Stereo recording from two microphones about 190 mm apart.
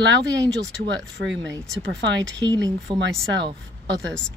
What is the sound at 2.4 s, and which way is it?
Speech, 20° right (ahead or behind).